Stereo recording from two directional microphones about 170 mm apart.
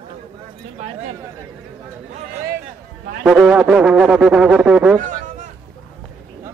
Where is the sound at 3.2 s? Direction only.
5° right (ahead or behind).